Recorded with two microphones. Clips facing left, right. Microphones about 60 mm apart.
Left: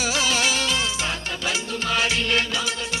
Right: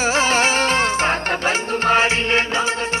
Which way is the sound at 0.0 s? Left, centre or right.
Right.